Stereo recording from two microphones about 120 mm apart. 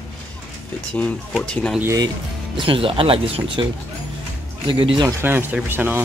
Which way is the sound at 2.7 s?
50° right (ahead or behind).